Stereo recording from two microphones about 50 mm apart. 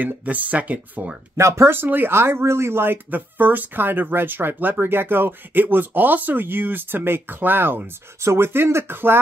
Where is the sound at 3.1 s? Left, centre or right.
Right.